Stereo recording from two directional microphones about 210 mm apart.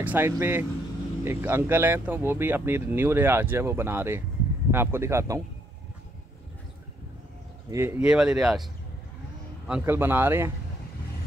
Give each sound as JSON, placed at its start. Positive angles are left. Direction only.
{"t": 0.0, "sound": "speech", "side_deg": -10}
{"t": 7.7, "sound": "speech", "side_deg": -10}
{"t": 9.7, "sound": "speech", "side_deg": -10}